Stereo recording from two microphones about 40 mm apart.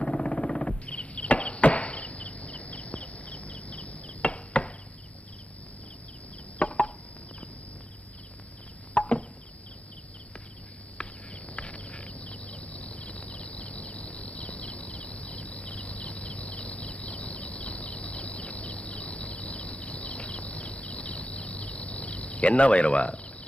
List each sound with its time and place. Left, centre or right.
0.0 s a sound: left
2.5 s cricket: left
4.6 s chop: left
6.6 s chicken: left
8.9 s chop: left
11.0 s insect: left